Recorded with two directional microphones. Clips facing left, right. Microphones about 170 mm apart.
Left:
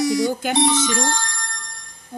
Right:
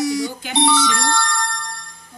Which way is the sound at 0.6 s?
75° right (ahead or behind).